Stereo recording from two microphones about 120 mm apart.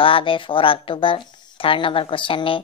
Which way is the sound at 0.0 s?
45° left (ahead or behind).